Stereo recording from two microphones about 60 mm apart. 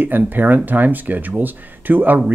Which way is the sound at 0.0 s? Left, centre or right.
Right.